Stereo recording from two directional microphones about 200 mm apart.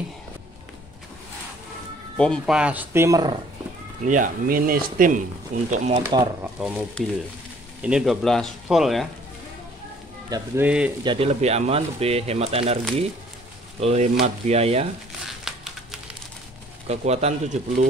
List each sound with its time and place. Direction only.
2.1 s speech: 5° left (ahead or behind); by 3.3 s 15° right (ahead or behind)
4.0 s speech: 40° right (ahead or behind)
6.0 s speech: 10° right (ahead or behind)
7.8 s speech: 5° right (ahead or behind)
10.3 s speech: 10° right (ahead or behind)
11.1 s speech: 30° right (ahead or behind)
13.7 s speech: 35° right (ahead or behind)
15.2 s crumpling: centre (ahead or behind)
16.8 s speech: 30° right (ahead or behind)